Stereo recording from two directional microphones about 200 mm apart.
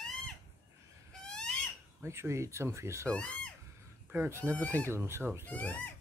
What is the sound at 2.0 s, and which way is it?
Speech, 15° right (ahead or behind).